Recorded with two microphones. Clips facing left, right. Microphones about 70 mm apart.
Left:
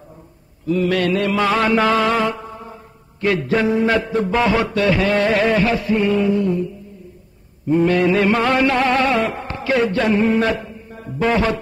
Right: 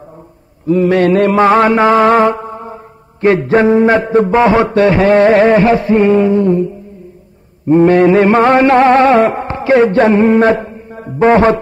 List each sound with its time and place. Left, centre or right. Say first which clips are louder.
0.7 s mantra: right 8 dB; right
7.6 s mantra: right 8 dB; right